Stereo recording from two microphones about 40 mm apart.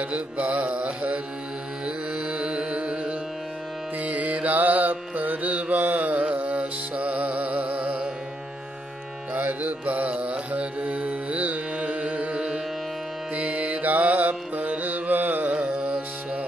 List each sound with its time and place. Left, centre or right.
0.0 s mantra: right
1.9 s music: right
4.0 s music: right
9.3 s music: right